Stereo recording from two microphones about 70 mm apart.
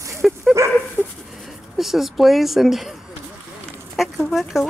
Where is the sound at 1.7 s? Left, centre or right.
Centre.